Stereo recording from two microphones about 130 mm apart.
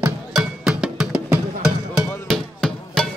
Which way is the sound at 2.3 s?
5° left (ahead or behind).